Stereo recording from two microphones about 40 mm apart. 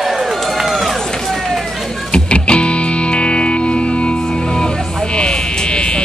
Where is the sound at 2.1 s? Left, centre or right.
Left.